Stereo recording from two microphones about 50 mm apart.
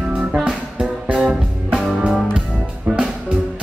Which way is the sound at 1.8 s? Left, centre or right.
Centre.